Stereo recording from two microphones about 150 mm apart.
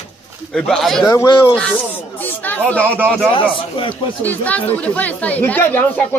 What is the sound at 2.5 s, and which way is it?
Speech, 10° left (ahead or behind).